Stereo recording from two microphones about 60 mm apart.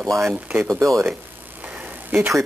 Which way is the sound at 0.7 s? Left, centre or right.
Right.